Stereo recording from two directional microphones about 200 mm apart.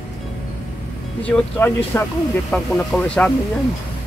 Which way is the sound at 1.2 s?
5° left (ahead or behind).